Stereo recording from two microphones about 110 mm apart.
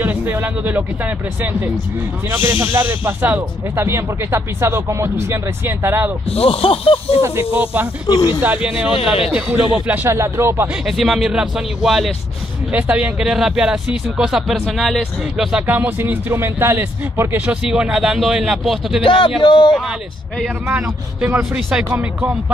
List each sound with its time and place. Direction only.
0.0 s speech: 20° right (ahead or behind)
6.3 s speech: 60° left (ahead or behind)
7.2 s speech: 25° right (ahead or behind)
7.5 s speech: 15° right (ahead or behind)
8.9 s speech: 55° left (ahead or behind)
9.3 s speech: 15° right (ahead or behind)
10.1 s speech: 25° right (ahead or behind)
10.9 s speech: centre (ahead or behind)
12.7 s speech: 15° right (ahead or behind)
15.6 s speech: 15° right (ahead or behind)
17.6 s speech: 10° right (ahead or behind)
19.0 s speech: 50° left (ahead or behind)
20.6 s speech: 20° right (ahead or behind)